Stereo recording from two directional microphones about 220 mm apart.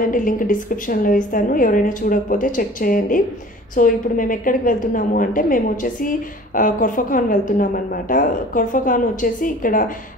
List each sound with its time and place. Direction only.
0.0 s a woman's voice: 40° left (ahead or behind)